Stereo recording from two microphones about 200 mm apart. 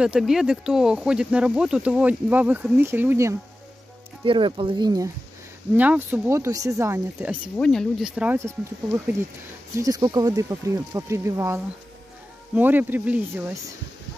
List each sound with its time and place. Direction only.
0.0 s speech: 5° right (ahead or behind)
4.2 s speech: 25° right (ahead or behind)
5.8 s speech: 10° right (ahead or behind)
7.5 s speech: 5° left (ahead or behind)